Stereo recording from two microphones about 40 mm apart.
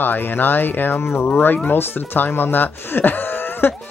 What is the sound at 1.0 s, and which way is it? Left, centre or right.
Speech, left.